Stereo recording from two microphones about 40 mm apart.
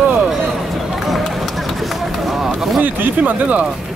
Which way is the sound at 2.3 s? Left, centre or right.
Centre.